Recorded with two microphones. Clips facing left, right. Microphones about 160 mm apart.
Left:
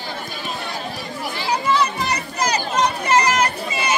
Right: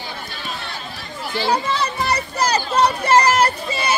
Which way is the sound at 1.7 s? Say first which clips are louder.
Left 1 dB; 30° right (ahead or behind).